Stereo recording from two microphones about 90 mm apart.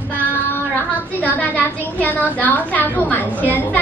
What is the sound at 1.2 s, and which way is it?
A woman's voice, 20° left (ahead or behind).